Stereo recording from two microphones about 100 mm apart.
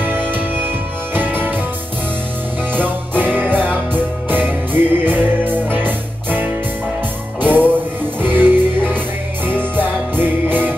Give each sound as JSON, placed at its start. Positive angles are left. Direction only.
{"t": 0.0, "sound": "music", "side_deg": -20}
{"t": 2.7, "sound": "music", "side_deg": -20}